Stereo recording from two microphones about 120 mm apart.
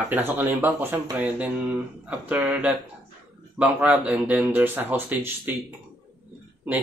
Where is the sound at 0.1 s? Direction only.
15° right (ahead or behind).